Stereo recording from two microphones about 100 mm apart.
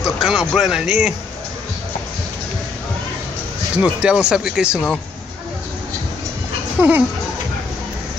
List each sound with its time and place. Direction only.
0.0 s music: 5° right (ahead or behind)
0.5 s speech: 5° right (ahead or behind)
3.7 s speech: 10° right (ahead or behind)
6.8 s speech: 15° right (ahead or behind)